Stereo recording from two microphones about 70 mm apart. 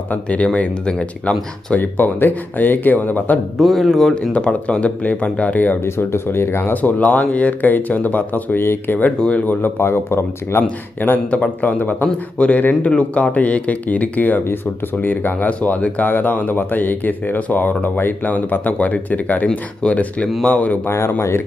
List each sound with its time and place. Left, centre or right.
0.1 s speech: centre
1.8 s speech: left
3.5 s speech: centre
4.1 s speech: centre
5.9 s speech: left
6.7 s speech: left
11.2 s speech: centre